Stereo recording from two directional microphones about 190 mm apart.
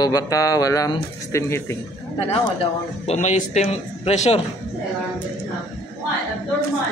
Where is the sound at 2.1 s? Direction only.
35° left (ahead or behind).